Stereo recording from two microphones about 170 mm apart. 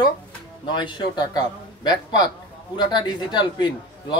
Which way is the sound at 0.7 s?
25° left (ahead or behind).